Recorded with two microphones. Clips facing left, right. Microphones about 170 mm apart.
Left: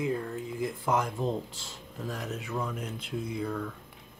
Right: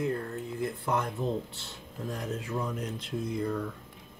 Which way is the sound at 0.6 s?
90° left.